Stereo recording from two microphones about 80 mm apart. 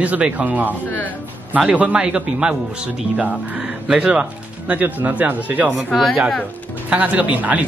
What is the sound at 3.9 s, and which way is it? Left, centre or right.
Speech, centre.